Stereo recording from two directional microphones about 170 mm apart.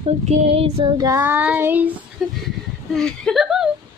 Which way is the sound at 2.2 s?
Centre (ahead or behind).